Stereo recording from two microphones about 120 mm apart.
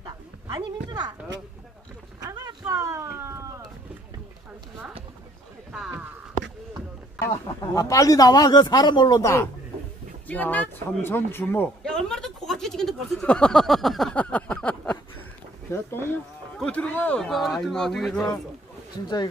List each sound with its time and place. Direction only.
0.0 s bow-wow: 40° right (ahead or behind)
2.1 s boat: 30° right (ahead or behind)
2.7 s a sound: 25° right (ahead or behind)
5.7 s speech: 10° right (ahead or behind)
7.7 s speech: 30° left (ahead or behind)
10.2 s speech: 15° left (ahead or behind)
11.8 s a sound: 5° left (ahead or behind)
15.7 s speech: 20° left (ahead or behind)
16.5 s speech: 10° left (ahead or behind)
17.2 s speech: centre (ahead or behind)